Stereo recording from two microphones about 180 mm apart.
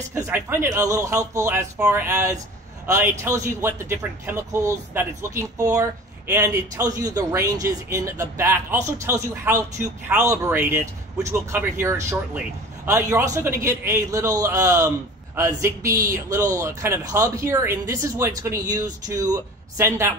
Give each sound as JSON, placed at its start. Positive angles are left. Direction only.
{"t": 0.1, "sound": "speech", "side_deg": -15}